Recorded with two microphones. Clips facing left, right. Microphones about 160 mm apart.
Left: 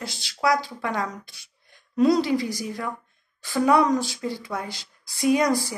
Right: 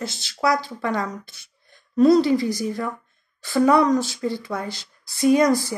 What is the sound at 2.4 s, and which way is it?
Speech, 40° right (ahead or behind).